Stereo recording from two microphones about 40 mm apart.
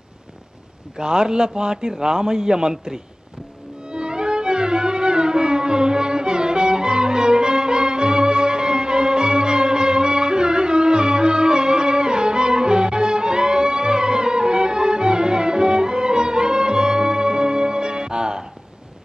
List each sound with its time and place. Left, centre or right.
0.9 s a man's voice: centre
3.9 s music: right